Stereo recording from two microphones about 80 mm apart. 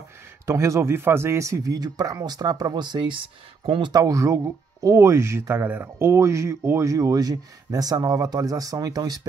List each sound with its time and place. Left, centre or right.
0.5 s speech: right
3.9 s speech: right